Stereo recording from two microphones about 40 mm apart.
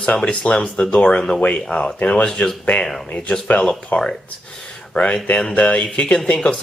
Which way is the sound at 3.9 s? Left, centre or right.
Left.